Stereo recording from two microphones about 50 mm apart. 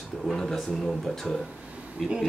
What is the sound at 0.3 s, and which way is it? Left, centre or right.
Speech, centre.